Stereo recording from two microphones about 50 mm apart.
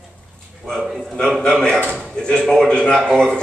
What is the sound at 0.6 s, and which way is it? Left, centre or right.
Speech, centre.